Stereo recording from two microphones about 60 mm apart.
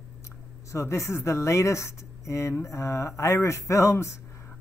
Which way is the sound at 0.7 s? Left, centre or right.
Left.